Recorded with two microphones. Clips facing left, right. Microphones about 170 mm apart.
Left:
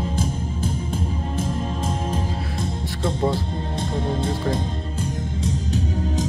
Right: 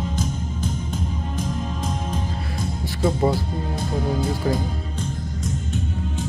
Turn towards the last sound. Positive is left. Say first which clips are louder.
# left 4 dB
turn(degrees=40)  # may be behind; listen again after turning